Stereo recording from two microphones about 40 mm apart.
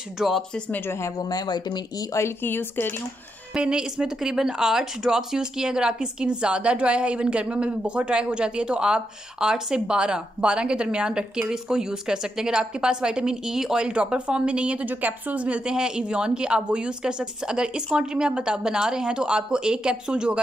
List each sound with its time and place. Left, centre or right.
0.2 s a woman's voice: centre
2.2 s speech: left
3.6 s a woman's voice: centre
13.8 s speech: right
14.9 s a woman's voice: right
15.6 s speech: centre